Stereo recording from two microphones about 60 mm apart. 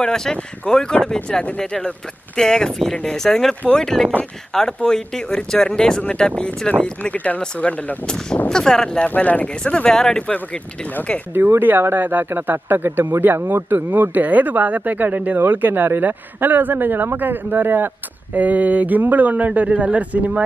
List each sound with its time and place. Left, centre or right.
0.1 s speech: centre
9.1 s speech: left
9.8 s speech: centre
11.3 s speech: right